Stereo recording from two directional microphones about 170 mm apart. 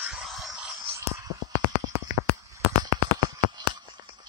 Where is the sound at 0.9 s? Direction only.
20° right (ahead or behind).